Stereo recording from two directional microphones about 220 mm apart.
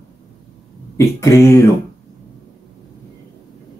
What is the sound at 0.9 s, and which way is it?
Speech, 15° left (ahead or behind).